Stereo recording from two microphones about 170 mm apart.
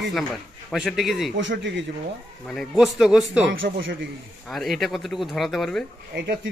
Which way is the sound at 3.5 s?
90° right.